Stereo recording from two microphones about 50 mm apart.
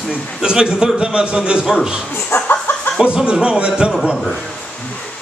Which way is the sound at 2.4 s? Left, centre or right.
Left.